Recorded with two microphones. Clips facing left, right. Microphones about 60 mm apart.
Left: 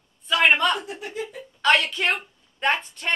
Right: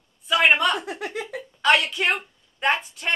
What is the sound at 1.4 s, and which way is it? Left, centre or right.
A woman's voice, centre.